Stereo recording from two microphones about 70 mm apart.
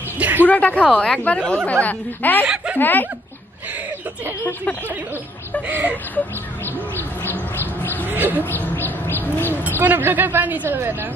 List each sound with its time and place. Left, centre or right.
0.2 s a sound: right
0.5 s a woman's voice: left
2.4 s speech: centre
2.8 s a woman's voice: left
5.7 s speech: right
6.1 s bird: left
8.1 s speech: right
8.5 s bird: left
9.8 s speech: right